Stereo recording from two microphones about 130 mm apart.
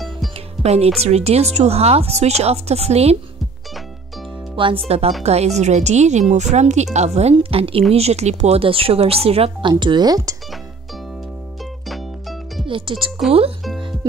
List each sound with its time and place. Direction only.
0.0 s music: centre (ahead or behind)
0.7 s speech: 50° right (ahead or behind)
4.6 s speech: 45° right (ahead or behind)
7.3 s speech: 45° right (ahead or behind); by 10.3 s 30° right (ahead or behind)
11.9 s music: centre (ahead or behind)
12.6 s speech: 40° right (ahead or behind)